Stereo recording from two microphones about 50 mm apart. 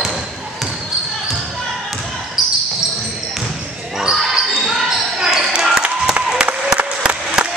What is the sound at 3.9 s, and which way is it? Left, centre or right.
Basketball bounce, centre.